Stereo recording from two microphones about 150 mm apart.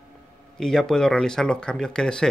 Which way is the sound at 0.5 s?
5° left (ahead or behind).